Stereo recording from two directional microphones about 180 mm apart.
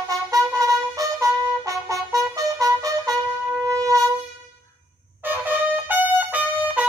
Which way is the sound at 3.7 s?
20° right (ahead or behind).